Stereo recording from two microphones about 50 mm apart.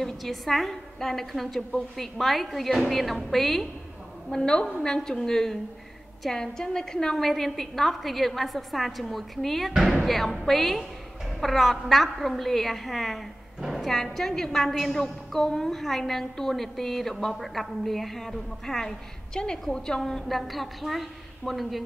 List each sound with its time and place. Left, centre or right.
0.0 s a woman's voice: centre
4.3 s a woman's voice: centre